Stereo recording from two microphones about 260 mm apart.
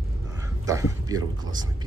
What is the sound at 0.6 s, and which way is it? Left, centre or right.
Speech, centre.